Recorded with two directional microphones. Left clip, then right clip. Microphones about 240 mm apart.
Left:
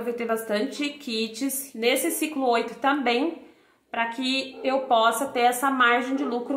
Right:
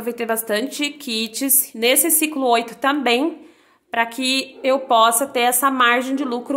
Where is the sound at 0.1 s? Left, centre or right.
Right.